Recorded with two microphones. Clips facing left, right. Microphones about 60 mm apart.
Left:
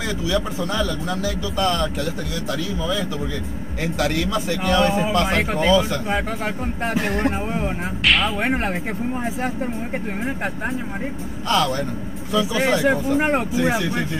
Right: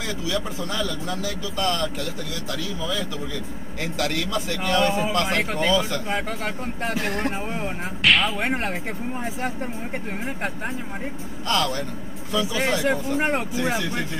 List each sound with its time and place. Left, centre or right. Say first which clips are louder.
0.3 s a man's voice: left 5 dB; left
0.8 s a man's voice: left 4 dB; centre
11.4 s a man's voice: left 4 dB; centre